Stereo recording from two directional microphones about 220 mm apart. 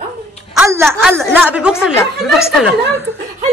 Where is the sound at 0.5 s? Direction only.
10° right (ahead or behind).